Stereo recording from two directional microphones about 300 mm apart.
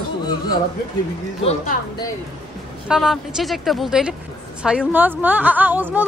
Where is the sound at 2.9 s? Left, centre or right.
Centre.